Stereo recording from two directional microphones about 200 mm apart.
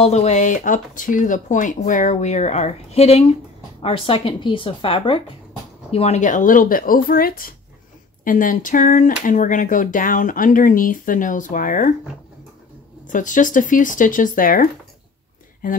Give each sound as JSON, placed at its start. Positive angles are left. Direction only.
{"t": 0.0, "sound": "a woman's voice", "side_deg": 35}
{"t": 13.0, "sound": "speech", "side_deg": 40}